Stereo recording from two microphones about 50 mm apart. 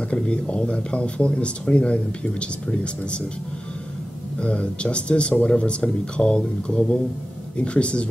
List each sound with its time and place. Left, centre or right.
0.1 s speech: left
4.4 s speech: left